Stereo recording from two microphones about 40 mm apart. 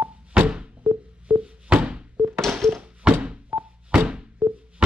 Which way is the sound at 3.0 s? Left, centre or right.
Right.